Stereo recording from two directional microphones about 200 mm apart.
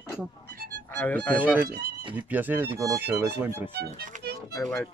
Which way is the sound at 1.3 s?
10° right (ahead or behind).